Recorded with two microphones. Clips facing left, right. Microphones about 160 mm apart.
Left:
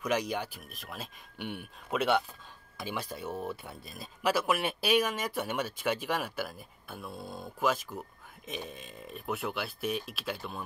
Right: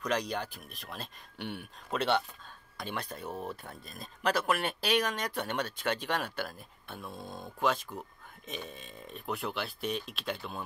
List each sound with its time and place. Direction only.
0.0 s speech: 5° left (ahead or behind)